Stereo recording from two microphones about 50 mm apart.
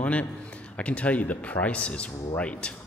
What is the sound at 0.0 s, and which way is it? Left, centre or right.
A man's voice, left.